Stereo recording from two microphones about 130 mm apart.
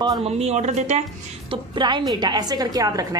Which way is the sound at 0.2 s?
55° right (ahead or behind).